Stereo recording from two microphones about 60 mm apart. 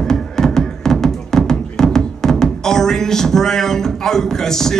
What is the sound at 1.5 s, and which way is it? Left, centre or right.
Speech, centre.